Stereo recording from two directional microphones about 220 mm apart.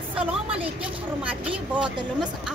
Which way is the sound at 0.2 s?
5° right (ahead or behind).